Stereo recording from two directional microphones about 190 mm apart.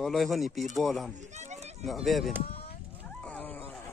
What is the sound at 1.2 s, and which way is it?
Run, 35° right (ahead or behind).